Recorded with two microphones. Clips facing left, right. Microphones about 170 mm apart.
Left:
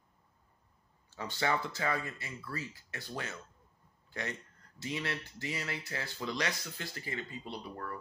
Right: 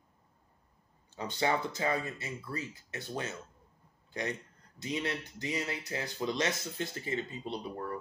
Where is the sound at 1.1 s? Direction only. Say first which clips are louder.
Right 2 dB; 20° right (ahead or behind).